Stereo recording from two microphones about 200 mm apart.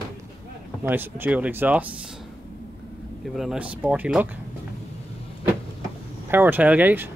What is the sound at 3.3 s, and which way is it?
Speech, 5° right (ahead or behind).